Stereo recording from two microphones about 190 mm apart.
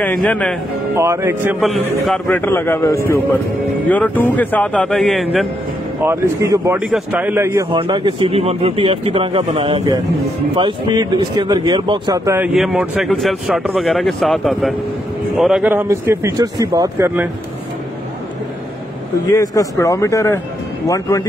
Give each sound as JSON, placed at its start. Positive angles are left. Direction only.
{"t": 0.0, "sound": "a man's voice", "side_deg": 5}
{"t": 0.9, "sound": "speech", "side_deg": -15}
{"t": 2.0, "sound": "a man's voice", "side_deg": 5}
{"t": 6.0, "sound": "speech", "side_deg": -15}
{"t": 6.8, "sound": "speech", "side_deg": -5}
{"t": 7.7, "sound": "speech", "side_deg": -25}
{"t": 12.4, "sound": "speech", "side_deg": 0}
{"t": 19.2, "sound": "a man's voice", "side_deg": 20}